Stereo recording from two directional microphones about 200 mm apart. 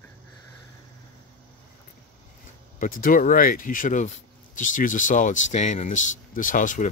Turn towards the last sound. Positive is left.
turn(degrees=40)  # may be behind; listen again after turning